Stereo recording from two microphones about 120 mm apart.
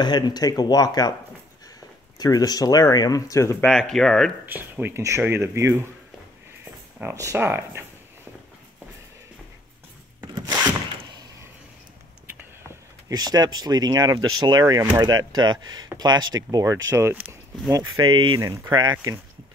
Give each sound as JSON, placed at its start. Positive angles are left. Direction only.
{"t": 0.0, "sound": "speech", "side_deg": 35}
{"t": 2.1, "sound": "speech", "side_deg": 35}
{"t": 3.6, "sound": "speech", "side_deg": 5}
{"t": 4.5, "sound": "speech", "side_deg": -15}
{"t": 10.2, "sound": "a sound", "side_deg": -25}
{"t": 13.1, "sound": "speech", "side_deg": -35}